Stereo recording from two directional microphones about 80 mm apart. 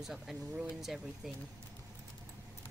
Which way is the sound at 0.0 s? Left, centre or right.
Centre.